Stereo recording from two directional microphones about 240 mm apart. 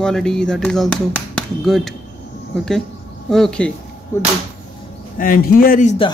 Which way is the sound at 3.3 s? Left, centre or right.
Centre.